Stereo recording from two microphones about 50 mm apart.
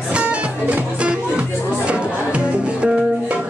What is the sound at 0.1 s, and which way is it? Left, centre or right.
Music, right.